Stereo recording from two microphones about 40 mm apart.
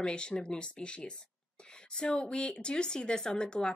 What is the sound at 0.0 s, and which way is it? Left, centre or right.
Speech, left.